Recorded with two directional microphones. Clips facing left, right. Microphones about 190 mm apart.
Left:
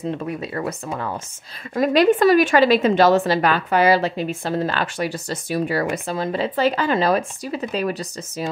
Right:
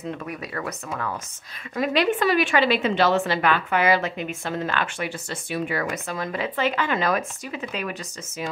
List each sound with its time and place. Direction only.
0.0 s speech: 30° left (ahead or behind)
1.8 s a woman's voice: 40° left (ahead or behind)